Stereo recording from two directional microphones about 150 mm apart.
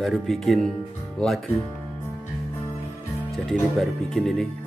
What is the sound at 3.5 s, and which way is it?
Speech, centre (ahead or behind).